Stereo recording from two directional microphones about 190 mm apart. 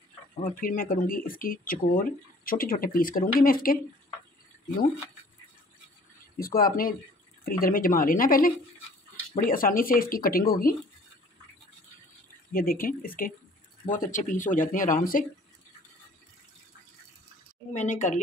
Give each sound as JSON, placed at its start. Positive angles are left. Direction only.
{"t": 0.4, "sound": "speech", "side_deg": 45}
{"t": 6.4, "sound": "speech", "side_deg": 50}
{"t": 12.5, "sound": "speech", "side_deg": 50}
{"t": 17.7, "sound": "a woman's voice", "side_deg": 40}